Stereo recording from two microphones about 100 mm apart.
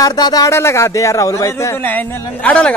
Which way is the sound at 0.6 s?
25° left (ahead or behind).